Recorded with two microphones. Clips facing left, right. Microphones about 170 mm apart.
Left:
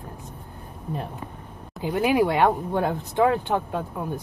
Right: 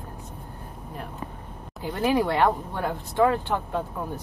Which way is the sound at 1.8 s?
15° left (ahead or behind).